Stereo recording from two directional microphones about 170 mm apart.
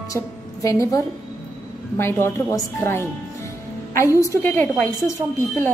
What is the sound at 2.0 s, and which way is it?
A woman's voice, 15° left (ahead or behind).